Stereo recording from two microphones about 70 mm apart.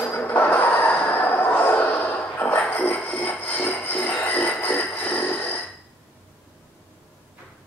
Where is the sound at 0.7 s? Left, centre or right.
Left.